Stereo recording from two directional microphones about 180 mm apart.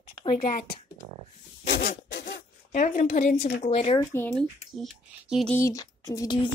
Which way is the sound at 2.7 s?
45° left (ahead or behind).